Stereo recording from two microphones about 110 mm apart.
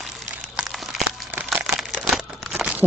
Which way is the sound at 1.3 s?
15° right (ahead or behind).